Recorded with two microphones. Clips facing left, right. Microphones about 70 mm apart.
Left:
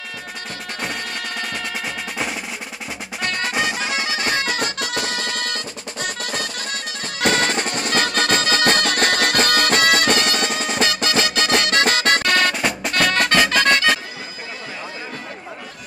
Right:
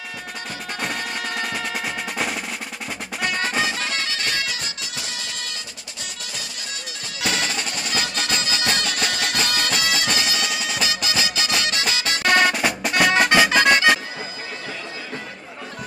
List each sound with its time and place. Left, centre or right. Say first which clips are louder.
0.7 s music: even; centre
3.2 s music: even; centre
3.5 s music: left 2 dB; centre; by 4.5 s left
4.5 s music: left 8 dB; left
12.2 s music: right 1 dB; centre